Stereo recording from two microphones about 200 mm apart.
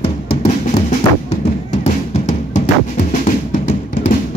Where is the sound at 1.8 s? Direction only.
35° left (ahead or behind).